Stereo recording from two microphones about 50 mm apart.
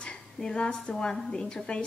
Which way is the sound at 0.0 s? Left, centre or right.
Centre.